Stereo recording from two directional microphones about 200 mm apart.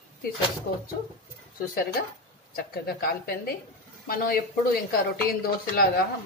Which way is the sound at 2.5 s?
50° left (ahead or behind).